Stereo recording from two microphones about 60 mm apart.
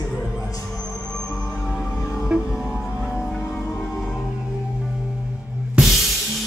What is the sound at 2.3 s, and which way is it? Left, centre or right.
Music, right.